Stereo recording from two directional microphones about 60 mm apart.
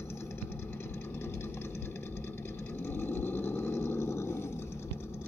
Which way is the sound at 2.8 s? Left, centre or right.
Left.